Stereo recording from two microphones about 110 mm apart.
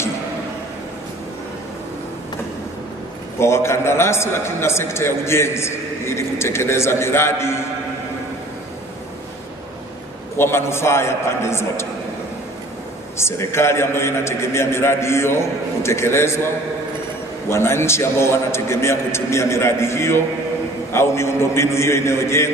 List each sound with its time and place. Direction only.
3.3 s a man's voice: 25° left (ahead or behind)
10.3 s a man's voice: 20° left (ahead or behind)
13.2 s a man's voice: 25° left (ahead or behind)
17.5 s a man's voice: 25° left (ahead or behind)